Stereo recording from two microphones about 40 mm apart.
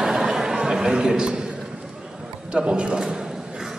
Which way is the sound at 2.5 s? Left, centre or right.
Right.